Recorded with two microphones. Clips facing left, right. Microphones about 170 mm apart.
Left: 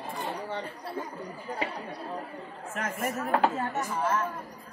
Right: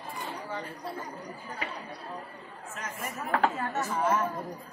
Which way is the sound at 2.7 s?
55° left (ahead or behind).